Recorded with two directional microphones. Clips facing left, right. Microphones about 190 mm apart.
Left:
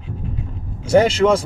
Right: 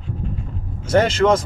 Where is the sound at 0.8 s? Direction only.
10° left (ahead or behind).